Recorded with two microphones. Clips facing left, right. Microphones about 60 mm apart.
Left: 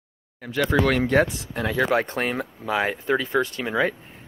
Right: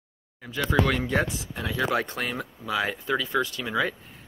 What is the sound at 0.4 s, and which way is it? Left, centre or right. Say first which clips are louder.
Speech: left 3 dB; left.